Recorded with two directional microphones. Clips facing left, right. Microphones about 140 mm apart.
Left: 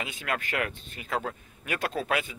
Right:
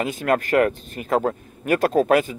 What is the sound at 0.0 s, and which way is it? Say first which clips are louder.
Speech: right 12 dB; 45° right (ahead or behind).